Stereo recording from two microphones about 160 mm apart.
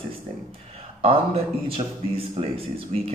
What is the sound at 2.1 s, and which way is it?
Speech, 35° right (ahead or behind).